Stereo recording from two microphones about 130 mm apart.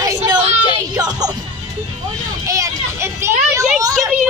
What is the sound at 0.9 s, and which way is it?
Music, 30° right (ahead or behind).